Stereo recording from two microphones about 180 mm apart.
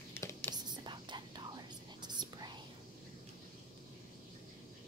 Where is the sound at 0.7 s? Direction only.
25° right (ahead or behind).